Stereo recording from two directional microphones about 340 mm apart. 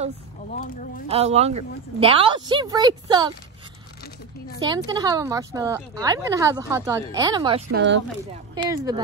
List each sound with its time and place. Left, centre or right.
0.5 s speech: left
1.0 s a woman's voice: centre
4.6 s a woman's voice: centre
7.7 s speech: right
8.6 s a woman's voice: centre